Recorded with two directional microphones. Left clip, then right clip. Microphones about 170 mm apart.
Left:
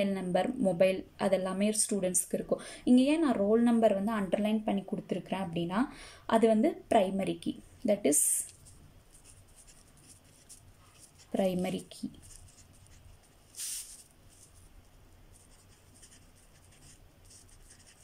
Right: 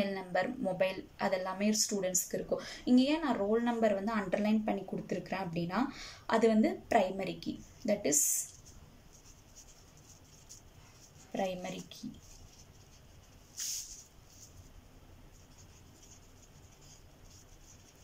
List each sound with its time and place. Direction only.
0.0 s a woman's voice: 20° left (ahead or behind)
11.3 s a woman's voice: 25° left (ahead or behind)